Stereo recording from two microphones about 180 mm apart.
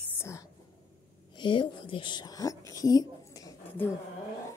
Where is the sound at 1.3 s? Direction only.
25° left (ahead or behind).